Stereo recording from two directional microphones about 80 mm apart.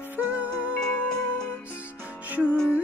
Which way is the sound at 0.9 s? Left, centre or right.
Centre.